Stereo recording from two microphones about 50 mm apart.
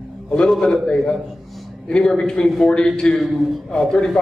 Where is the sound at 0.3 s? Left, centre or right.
Centre.